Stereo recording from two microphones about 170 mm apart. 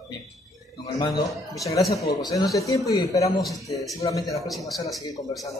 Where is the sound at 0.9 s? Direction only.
20° left (ahead or behind).